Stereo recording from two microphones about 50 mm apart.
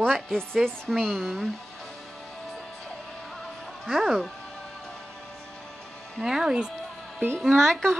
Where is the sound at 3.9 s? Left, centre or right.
Centre.